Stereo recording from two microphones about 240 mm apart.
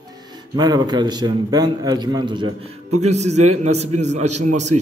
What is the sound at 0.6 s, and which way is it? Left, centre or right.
A man's voice, centre.